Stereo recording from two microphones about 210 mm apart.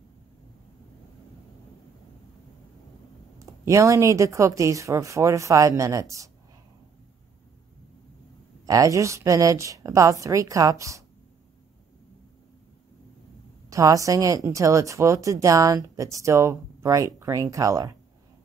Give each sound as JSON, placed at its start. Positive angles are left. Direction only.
{"t": 3.3, "sound": "speech", "side_deg": -15}
{"t": 8.6, "sound": "speech", "side_deg": -15}
{"t": 13.7, "sound": "speech", "side_deg": -15}